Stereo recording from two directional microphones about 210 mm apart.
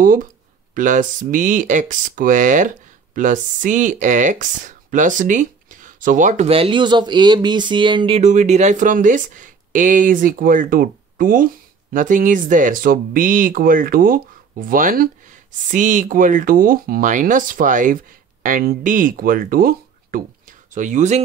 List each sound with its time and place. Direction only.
0.0 s speech: 40° right (ahead or behind)